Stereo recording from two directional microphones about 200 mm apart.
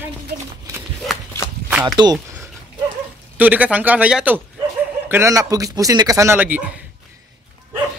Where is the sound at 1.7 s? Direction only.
5° right (ahead or behind).